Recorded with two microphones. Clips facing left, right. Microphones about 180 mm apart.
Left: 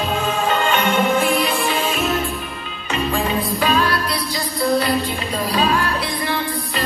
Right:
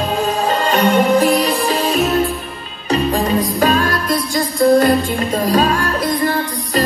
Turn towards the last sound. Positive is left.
turn(degrees=-45)  # may be behind; listen again after turning